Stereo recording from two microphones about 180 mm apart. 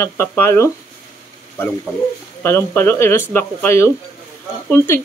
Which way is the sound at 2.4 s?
15° left (ahead or behind).